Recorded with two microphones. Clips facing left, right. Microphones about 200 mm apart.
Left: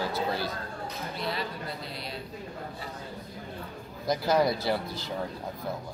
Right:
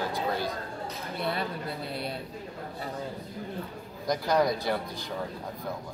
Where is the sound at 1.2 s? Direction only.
55° right (ahead or behind).